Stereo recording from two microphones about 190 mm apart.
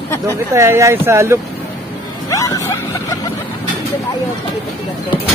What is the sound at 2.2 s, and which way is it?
Music, 15° left (ahead or behind).